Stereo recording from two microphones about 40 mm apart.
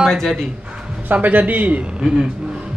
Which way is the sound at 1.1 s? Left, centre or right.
Right.